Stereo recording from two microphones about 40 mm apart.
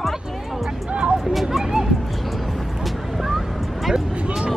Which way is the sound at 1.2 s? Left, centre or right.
Centre.